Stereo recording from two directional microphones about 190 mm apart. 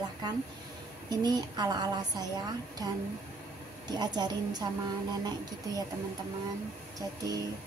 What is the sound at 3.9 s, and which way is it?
Speech, 20° right (ahead or behind).